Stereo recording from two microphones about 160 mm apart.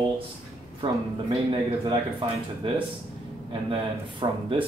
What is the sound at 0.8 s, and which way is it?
Speech, 35° right (ahead or behind).